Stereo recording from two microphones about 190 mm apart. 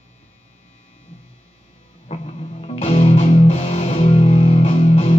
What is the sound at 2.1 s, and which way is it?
Music, 35° left (ahead or behind).